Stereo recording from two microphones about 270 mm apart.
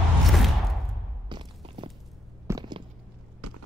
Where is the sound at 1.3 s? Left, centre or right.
Centre.